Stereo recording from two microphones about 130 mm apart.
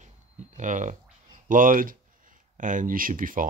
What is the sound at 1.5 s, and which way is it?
Speech, 90° right.